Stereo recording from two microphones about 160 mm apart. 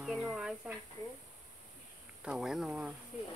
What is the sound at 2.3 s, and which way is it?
Speech, 5° right (ahead or behind).